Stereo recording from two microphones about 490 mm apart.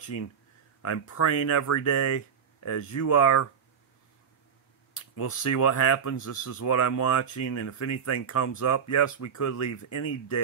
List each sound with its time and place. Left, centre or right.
0.1 s speech: left
5.1 s speech: left